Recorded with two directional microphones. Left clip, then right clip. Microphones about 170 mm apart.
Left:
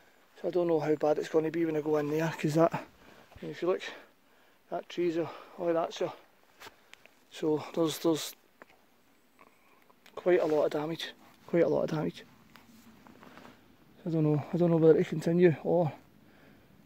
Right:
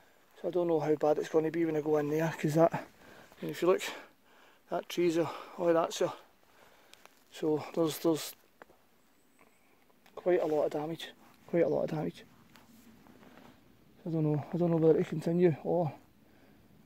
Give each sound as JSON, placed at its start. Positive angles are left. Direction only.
{"t": 0.4, "sound": "speech", "side_deg": 10}
{"t": 3.3, "sound": "speech", "side_deg": -50}
{"t": 7.2, "sound": "speech", "side_deg": 5}
{"t": 10.0, "sound": "speech", "side_deg": 20}
{"t": 13.2, "sound": "a sound", "side_deg": 25}
{"t": 14.0, "sound": "speech", "side_deg": 20}